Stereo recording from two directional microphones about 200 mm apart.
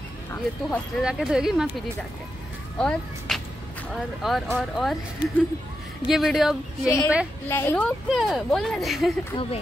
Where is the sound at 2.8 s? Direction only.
5° left (ahead or behind).